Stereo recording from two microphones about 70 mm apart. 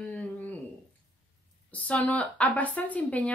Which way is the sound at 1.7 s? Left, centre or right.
Left.